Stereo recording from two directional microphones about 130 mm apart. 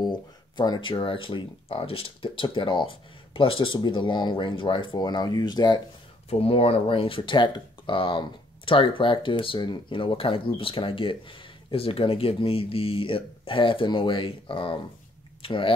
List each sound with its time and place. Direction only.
0.0 s speech: 35° left (ahead or behind)
6.4 s speech: 45° left (ahead or behind)